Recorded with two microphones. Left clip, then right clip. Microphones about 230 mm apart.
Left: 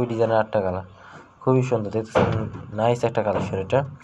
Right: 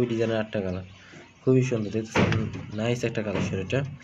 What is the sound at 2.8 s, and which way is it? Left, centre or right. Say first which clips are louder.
Speech: left 7 dB; centre.